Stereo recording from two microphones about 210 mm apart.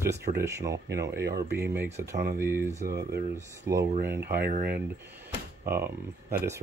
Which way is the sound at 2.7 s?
35° right (ahead or behind).